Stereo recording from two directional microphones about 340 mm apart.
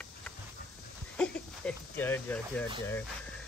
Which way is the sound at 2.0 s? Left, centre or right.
Centre.